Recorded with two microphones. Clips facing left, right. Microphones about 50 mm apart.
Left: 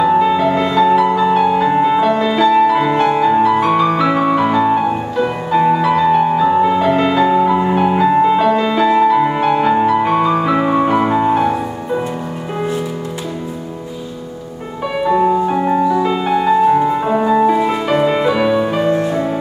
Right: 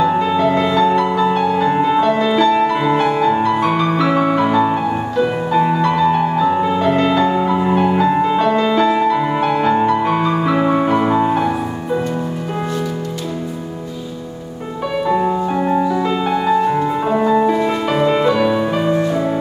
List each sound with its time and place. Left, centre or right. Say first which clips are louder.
0.0 s music: left 2 dB; centre
15.0 s music: left 4 dB; centre